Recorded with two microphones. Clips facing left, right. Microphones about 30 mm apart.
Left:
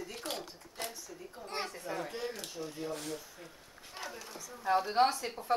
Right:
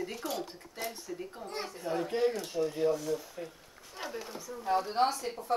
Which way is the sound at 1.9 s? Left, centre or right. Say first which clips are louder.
Right 8 dB; right.